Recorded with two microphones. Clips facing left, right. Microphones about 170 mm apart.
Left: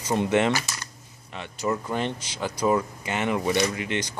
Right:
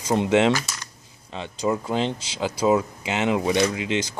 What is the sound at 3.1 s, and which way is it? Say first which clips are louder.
Speech: right 3 dB; 20° right (ahead or behind).